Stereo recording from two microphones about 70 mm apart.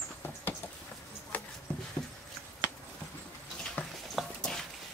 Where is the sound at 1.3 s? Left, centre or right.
Left.